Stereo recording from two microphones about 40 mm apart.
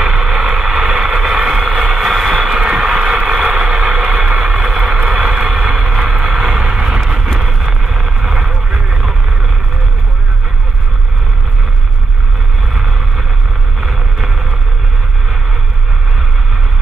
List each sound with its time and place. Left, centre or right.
0.2 s a sound: centre
1.3 s vehicle: centre
2.0 s vehicle: centre
2.5 s vehicle: right
3.7 s a sound: centre
4.4 s vehicle: centre
13.7 s vehicle: centre